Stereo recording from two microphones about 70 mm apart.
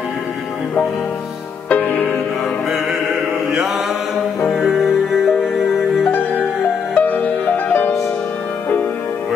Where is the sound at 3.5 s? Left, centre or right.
Centre.